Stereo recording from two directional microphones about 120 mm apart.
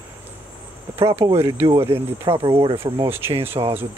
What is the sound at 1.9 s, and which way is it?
Speech, 55° right (ahead or behind).